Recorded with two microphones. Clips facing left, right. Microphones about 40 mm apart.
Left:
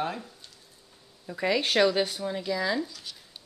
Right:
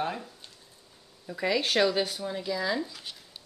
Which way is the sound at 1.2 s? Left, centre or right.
Centre.